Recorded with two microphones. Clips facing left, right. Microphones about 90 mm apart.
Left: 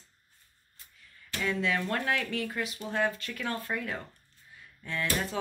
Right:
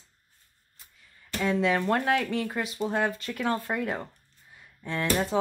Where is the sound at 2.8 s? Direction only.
30° right (ahead or behind).